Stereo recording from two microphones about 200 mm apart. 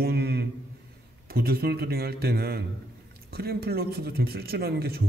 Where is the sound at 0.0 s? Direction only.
55° right (ahead or behind).